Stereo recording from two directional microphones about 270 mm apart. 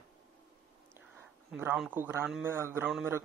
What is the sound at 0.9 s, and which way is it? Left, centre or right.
A man's voice, centre.